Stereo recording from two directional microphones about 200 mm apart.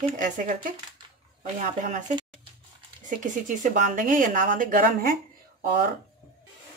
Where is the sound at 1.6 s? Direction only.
40° right (ahead or behind).